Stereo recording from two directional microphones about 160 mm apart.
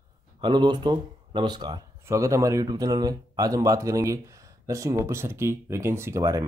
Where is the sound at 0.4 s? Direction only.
30° right (ahead or behind).